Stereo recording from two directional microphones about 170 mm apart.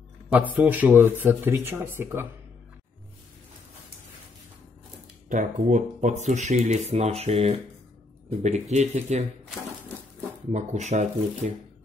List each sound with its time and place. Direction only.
0.6 s speech: 10° right (ahead or behind)
5.3 s speech: 45° right (ahead or behind)
10.5 s speech: 45° right (ahead or behind)